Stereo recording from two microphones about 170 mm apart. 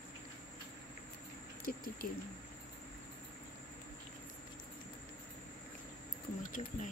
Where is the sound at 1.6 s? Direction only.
55° left (ahead or behind).